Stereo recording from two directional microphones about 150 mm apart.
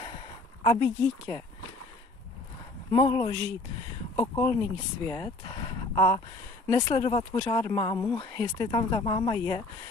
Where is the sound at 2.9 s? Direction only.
30° left (ahead or behind).